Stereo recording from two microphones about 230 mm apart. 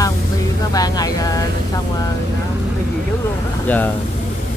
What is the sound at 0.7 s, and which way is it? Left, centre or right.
Speech, centre.